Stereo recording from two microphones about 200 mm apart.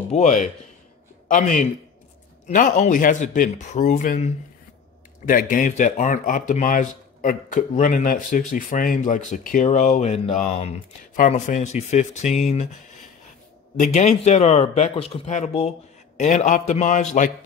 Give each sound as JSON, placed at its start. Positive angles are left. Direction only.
{"t": 0.1, "sound": "speech", "side_deg": 35}